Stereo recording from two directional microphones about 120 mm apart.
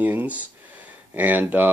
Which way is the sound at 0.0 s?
15° right (ahead or behind).